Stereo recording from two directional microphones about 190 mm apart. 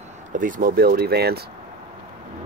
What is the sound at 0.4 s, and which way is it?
Speech, 45° right (ahead or behind).